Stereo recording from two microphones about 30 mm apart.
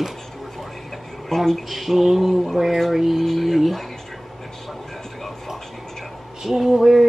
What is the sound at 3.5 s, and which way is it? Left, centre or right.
Speech, centre.